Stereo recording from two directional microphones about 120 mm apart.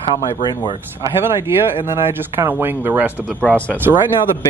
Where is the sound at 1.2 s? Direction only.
20° right (ahead or behind).